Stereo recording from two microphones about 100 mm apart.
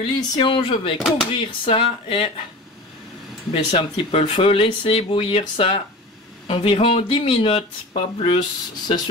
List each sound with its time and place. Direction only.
0.0 s speech: 60° left (ahead or behind)
3.5 s speech: 65° left (ahead or behind)
8.8 s a sound: 45° left (ahead or behind)